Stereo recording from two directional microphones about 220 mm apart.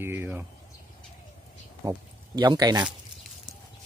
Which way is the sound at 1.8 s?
15° right (ahead or behind).